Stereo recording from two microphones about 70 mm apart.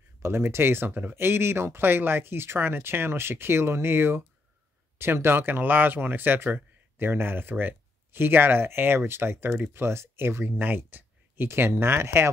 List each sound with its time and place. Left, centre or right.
0.2 s speech: right